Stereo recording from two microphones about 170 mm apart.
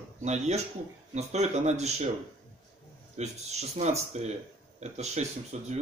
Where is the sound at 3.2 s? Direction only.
40° right (ahead or behind).